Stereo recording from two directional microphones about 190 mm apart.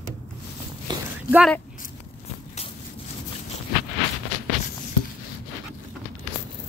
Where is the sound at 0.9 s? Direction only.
25° right (ahead or behind).